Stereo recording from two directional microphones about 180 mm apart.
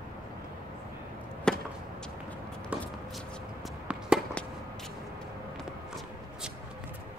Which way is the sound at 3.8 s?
5° right (ahead or behind).